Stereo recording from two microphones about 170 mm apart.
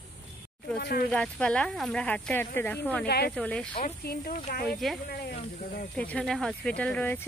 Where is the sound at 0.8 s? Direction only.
65° left (ahead or behind).